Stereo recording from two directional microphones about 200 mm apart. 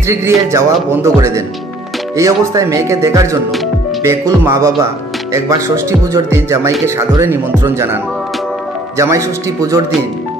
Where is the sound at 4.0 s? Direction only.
15° right (ahead or behind).